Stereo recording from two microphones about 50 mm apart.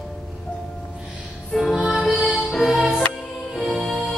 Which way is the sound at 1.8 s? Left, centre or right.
Left.